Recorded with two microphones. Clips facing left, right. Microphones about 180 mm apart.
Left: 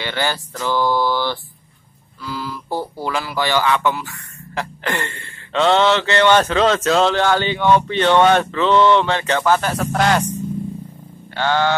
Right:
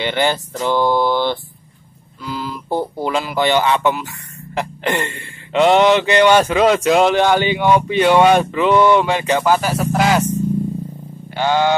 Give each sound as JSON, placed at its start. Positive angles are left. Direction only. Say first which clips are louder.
{"t": 0.0, "sound": "speech", "louder": "right 5 dB", "side_deg": -20}
{"t": 11.3, "sound": "speech", "louder": "right 2 dB", "side_deg": -15}